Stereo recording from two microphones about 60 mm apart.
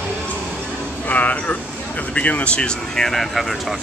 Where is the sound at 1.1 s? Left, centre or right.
Left; by 3.4 s centre.